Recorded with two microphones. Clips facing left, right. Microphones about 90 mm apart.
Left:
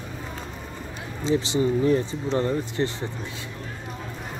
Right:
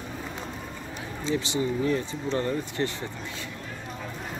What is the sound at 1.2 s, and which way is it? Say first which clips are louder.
Speech: left 5 dB; 30° left (ahead or behind).